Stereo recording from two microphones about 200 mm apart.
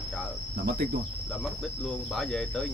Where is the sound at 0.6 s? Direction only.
50° right (ahead or behind).